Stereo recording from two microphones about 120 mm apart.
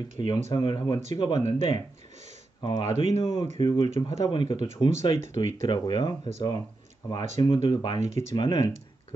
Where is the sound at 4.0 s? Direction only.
30° left (ahead or behind).